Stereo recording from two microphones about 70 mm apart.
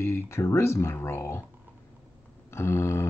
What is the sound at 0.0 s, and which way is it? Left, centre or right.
Speech, left.